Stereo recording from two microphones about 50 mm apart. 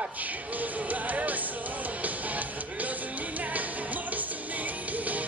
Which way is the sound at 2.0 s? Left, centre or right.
Right.